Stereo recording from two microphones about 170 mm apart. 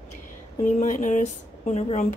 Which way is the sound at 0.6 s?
45° left (ahead or behind).